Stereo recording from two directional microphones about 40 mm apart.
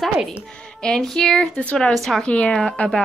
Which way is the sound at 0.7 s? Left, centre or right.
Centre.